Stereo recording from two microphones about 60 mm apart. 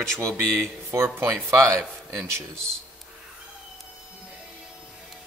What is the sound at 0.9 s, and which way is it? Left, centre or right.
Speech, right.